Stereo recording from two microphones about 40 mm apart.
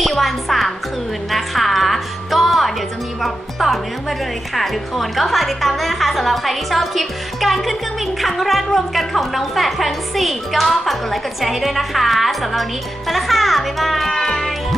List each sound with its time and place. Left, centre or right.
0.0 s music: centre
3.2 s a woman's voice: centre
14.1 s music: centre